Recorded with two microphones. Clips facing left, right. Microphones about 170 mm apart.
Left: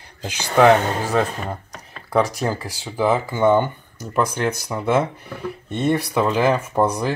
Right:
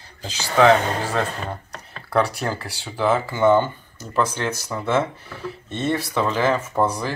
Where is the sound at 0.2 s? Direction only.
15° left (ahead or behind).